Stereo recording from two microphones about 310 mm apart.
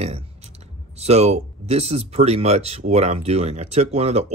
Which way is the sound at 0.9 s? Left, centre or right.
Centre.